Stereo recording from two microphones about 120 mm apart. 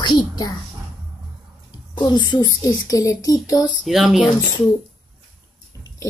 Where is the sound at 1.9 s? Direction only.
40° left (ahead or behind).